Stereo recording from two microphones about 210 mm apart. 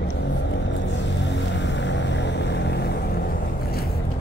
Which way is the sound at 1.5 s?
60° left (ahead or behind).